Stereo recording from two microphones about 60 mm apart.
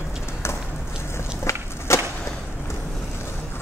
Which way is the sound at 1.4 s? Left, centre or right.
Left.